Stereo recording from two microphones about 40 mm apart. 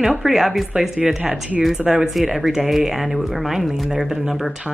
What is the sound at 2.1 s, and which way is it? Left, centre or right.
Speech, centre.